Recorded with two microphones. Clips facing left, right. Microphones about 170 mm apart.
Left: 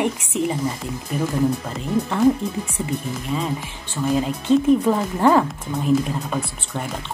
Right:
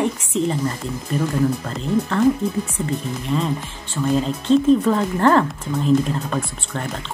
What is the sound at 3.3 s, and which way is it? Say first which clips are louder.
A woman's voice: right 3 dB; 5° left (ahead or behind).